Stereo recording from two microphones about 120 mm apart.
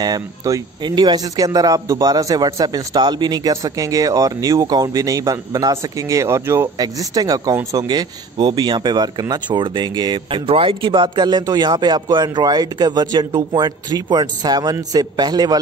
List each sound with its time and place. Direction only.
0.0 s speech: 35° right (ahead or behind)
6.8 s speech: 35° right (ahead or behind)